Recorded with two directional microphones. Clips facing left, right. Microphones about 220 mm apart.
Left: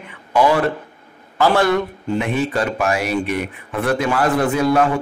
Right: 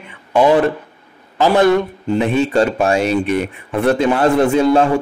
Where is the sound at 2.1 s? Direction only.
30° right (ahead or behind).